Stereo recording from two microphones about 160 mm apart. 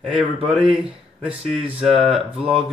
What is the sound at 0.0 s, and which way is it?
Speech, 5° right (ahead or behind).